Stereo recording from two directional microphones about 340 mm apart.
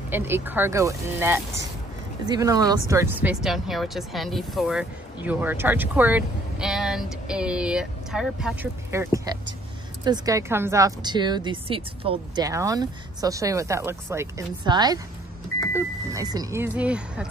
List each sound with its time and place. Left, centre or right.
0.1 s a woman's voice: centre